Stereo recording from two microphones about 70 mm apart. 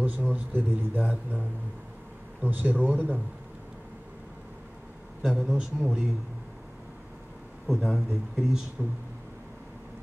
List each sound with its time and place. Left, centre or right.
0.0 s a man's voice: right
5.2 s a man's voice: centre
7.6 s speech: centre